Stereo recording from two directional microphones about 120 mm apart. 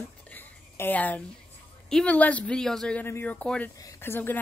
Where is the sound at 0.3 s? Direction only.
15° left (ahead or behind).